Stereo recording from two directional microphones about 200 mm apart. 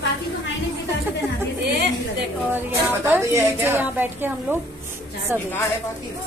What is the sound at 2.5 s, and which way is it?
A woman's voice, 10° right (ahead or behind).